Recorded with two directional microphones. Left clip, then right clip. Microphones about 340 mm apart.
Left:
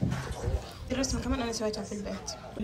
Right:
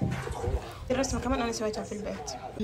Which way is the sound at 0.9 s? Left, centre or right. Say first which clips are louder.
Right 4 dB; centre.